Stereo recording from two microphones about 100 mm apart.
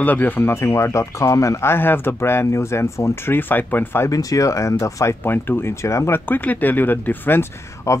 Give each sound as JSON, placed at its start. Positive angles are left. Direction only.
{"t": 0.0, "sound": "speech", "side_deg": 20}
{"t": 4.1, "sound": "speech", "side_deg": 35}
{"t": 5.2, "sound": "speech", "side_deg": 20}